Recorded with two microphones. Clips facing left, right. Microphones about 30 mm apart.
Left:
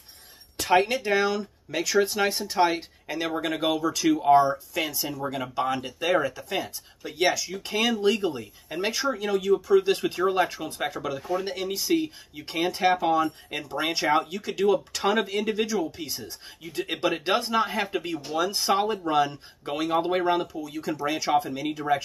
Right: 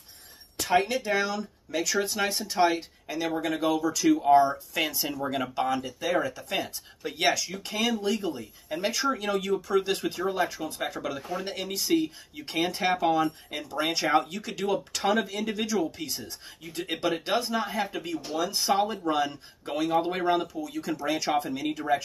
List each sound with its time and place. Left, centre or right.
0.7 s speech: centre
4.7 s speech: centre
5.8 s speech: left
7.1 s speech: centre
7.9 s speech: left
8.6 s speech: centre
9.1 s speech: centre
9.8 s speech: centre
10.2 s speech: left
10.8 s speech: centre
17.1 s speech: centre
17.9 s speech: left
18.3 s speech: centre